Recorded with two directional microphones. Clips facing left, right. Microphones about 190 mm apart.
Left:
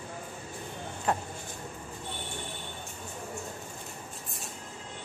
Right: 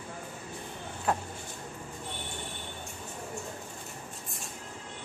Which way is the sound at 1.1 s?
5° right (ahead or behind).